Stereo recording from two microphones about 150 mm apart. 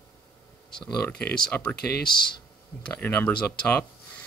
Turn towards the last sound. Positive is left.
turn(degrees=10)  # may be behind; listen again after turning